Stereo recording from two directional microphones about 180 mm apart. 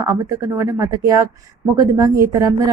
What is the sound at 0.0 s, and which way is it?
A woman's voice, 15° right (ahead or behind).